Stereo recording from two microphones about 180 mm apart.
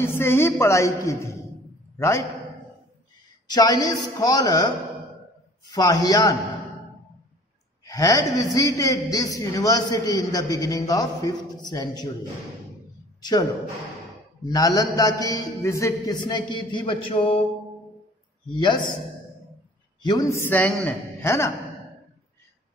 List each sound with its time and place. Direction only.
0.0 s a woman's voice: 15° left (ahead or behind)
3.4 s a man's voice: 20° left (ahead or behind)
5.7 s a man's voice: 20° left (ahead or behind)
7.8 s a man's voice: 20° left (ahead or behind)
13.2 s a man's voice: 20° left (ahead or behind)
18.4 s a man's voice: 25° left (ahead or behind)
20.0 s a woman's voice: 20° left (ahead or behind)